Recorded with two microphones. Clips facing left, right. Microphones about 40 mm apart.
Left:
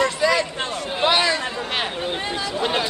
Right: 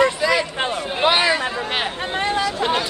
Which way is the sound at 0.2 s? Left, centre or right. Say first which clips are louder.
Right 1 dB; centre.